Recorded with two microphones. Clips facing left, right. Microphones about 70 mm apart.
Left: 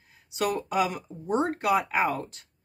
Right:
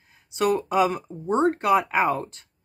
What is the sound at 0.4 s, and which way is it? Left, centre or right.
Speech, right.